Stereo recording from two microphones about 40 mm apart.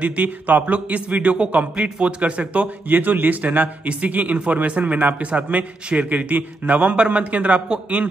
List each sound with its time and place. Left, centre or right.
0.0 s speech: right
2.9 s speech: right